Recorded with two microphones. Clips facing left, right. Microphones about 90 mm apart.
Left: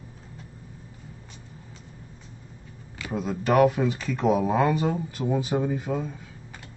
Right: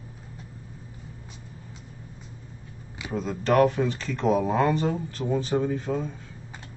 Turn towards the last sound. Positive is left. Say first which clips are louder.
# even
turn(degrees=5)  # may be behind; listen again after turning